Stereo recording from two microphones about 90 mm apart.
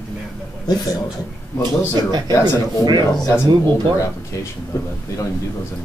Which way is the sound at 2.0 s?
45° right (ahead or behind).